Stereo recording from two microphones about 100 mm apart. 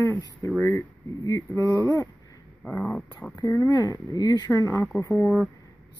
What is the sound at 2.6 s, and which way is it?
Speech, 10° left (ahead or behind).